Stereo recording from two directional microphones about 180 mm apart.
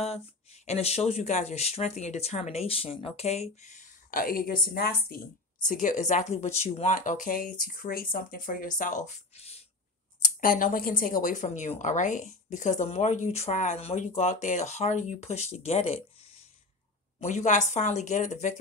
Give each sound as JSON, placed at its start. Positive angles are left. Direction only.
{"t": 0.0, "sound": "a woman's voice", "side_deg": 35}
{"t": 5.7, "sound": "speech", "side_deg": 45}
{"t": 10.4, "sound": "a woman's voice", "side_deg": 50}
{"t": 17.2, "sound": "a woman's voice", "side_deg": 40}